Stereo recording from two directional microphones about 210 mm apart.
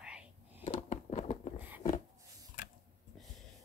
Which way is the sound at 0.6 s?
35° left (ahead or behind).